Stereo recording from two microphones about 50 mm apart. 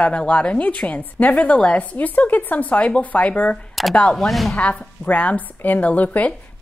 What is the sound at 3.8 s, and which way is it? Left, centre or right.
Speech, centre.